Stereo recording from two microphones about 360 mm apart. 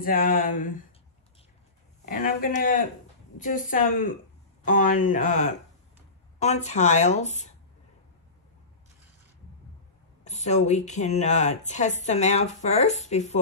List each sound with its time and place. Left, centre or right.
0.0 s speech: left
2.0 s speech: left
10.2 s speech: centre